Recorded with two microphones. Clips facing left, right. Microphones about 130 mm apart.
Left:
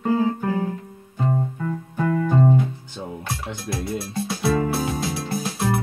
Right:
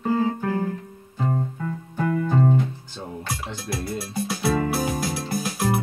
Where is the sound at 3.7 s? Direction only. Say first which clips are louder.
Left 2 dB; centre (ahead or behind).